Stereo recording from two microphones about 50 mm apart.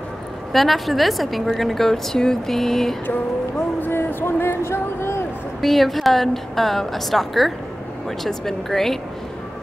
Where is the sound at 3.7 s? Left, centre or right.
Left.